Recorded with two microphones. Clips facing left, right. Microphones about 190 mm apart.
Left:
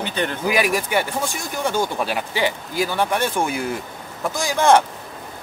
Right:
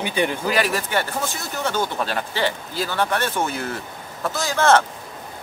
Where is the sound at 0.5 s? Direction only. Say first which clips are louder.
Left 2 dB; 15° left (ahead or behind).